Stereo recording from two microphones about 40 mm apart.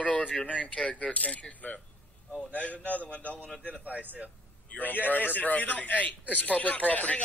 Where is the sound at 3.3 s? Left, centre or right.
Left.